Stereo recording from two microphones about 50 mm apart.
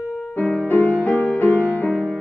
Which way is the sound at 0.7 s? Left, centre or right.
Left.